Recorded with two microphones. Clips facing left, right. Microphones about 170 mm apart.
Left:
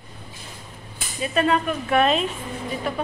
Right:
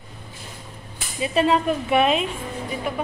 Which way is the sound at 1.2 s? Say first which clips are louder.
Right 2 dB; 25° right (ahead or behind).